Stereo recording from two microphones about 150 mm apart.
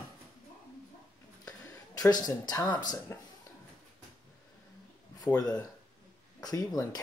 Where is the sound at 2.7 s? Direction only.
30° left (ahead or behind).